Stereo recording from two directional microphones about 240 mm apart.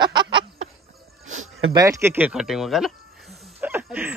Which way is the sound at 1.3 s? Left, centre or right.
Right.